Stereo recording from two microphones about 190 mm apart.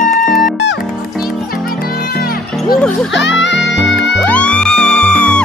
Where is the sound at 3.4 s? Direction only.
70° left (ahead or behind).